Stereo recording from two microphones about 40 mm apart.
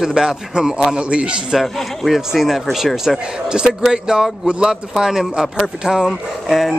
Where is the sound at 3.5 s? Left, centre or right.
Right.